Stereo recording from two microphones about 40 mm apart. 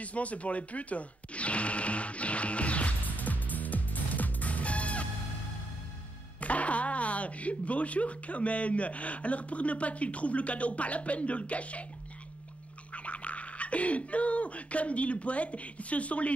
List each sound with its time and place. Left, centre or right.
0.0 s speech: left
3.0 s music: left
6.4 s speech: left
12.9 s a sound: left